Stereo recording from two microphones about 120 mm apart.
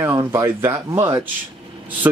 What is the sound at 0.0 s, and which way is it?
Speech, 25° right (ahead or behind).